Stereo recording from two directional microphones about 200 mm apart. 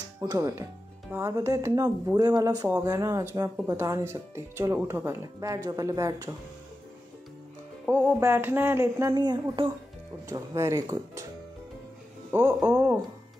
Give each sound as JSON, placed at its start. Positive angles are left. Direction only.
{"t": 0.2, "sound": "speech", "side_deg": -20}
{"t": 7.8, "sound": "speech", "side_deg": -5}
{"t": 12.3, "sound": "speech", "side_deg": -15}